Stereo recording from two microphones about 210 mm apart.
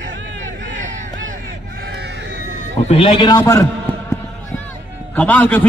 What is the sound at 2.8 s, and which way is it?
Speech, 30° left (ahead or behind).